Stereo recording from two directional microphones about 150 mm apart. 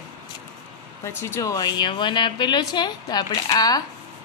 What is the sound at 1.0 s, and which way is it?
A woman's voice, 20° left (ahead or behind).